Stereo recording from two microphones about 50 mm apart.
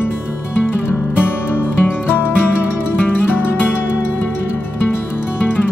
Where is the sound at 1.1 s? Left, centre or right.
Left.